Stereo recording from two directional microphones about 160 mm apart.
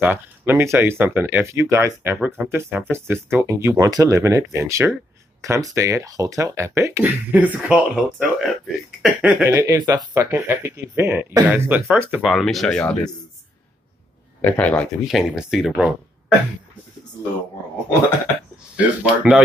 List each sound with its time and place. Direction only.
0.0 s speech: 10° right (ahead or behind)
9.4 s speech: 15° right (ahead or behind); by 13.1 s 5° left (ahead or behind)
14.4 s speech: 10° left (ahead or behind)
18.8 s speech: 5° right (ahead or behind)